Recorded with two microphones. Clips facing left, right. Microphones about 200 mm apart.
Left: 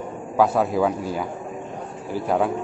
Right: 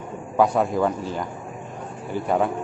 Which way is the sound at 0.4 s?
5° left (ahead or behind).